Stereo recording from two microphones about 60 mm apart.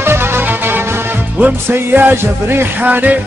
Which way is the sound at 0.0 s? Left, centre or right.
Right.